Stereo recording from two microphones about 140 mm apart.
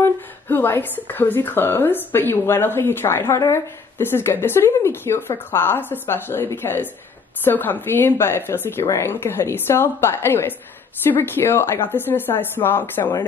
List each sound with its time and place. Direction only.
0.0 s a woman's voice: 15° left (ahead or behind)